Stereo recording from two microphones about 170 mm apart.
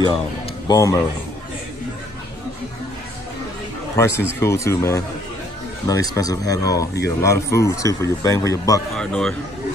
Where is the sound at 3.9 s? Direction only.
15° left (ahead or behind).